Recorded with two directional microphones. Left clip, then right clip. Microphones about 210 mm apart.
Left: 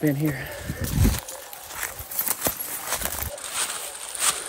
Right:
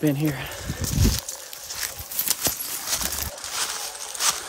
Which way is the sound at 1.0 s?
Centre (ahead or behind).